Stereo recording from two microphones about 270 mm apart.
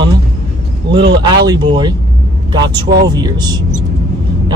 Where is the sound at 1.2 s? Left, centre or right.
Centre.